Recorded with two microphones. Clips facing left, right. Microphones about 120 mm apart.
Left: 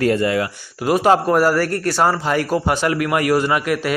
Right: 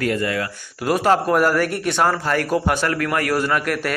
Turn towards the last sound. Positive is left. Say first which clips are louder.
# left 2 dB
turn(degrees=10)  # may be behind; listen again after turning